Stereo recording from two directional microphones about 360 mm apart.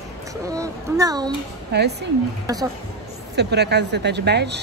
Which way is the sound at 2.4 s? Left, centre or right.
Centre.